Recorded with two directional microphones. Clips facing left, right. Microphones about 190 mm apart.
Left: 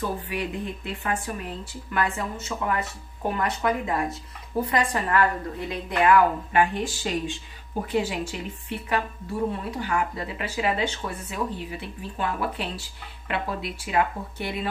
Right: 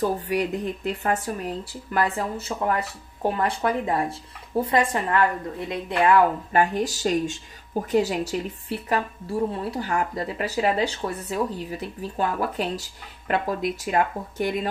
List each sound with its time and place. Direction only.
0.0 s a woman's voice: 40° right (ahead or behind)
6.5 s speech: 40° right (ahead or behind)